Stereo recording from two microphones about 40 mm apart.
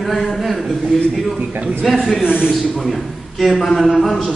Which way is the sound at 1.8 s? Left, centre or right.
Centre.